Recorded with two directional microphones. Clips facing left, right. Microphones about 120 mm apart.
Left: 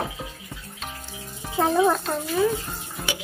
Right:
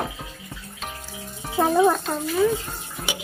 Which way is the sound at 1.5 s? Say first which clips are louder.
Right 2 dB; 5° right (ahead or behind).